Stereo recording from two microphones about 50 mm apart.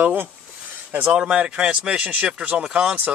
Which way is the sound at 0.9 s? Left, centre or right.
Right.